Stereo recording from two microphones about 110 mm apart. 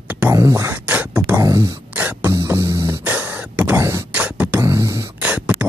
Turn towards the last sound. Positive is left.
turn(degrees=-15)  # may be behind; listen again after turning